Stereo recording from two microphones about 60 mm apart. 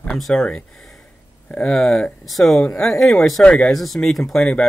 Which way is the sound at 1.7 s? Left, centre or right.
Centre.